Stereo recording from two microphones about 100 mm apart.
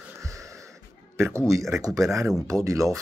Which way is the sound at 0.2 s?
30° right (ahead or behind).